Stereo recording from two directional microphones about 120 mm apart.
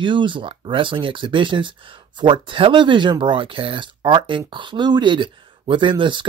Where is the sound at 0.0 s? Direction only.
45° right (ahead or behind).